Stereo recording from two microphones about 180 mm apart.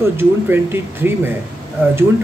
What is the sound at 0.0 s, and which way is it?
Speech, 10° right (ahead or behind).